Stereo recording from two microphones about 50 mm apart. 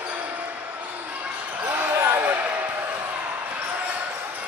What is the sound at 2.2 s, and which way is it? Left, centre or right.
Basketball bounce, right.